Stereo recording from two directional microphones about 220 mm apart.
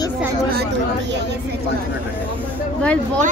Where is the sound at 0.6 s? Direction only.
50° right (ahead or behind).